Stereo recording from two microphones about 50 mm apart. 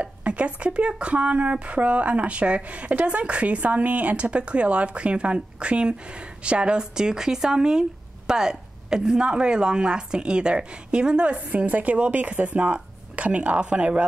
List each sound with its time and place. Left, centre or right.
0.0 s a woman's voice: right
11.5 s speech: right